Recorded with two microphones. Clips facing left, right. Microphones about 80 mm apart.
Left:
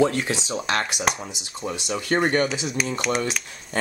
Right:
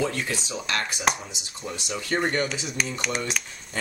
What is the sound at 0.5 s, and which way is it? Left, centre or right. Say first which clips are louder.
Speech: left 4 dB; left.